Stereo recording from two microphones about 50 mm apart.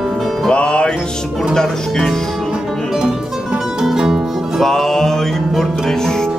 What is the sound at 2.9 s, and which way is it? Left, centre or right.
Music, centre.